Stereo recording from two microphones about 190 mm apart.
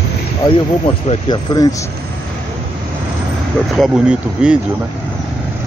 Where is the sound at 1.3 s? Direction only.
20° left (ahead or behind).